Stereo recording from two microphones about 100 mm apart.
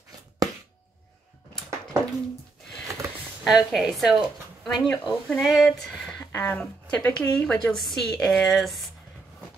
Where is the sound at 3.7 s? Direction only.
Centre (ahead or behind).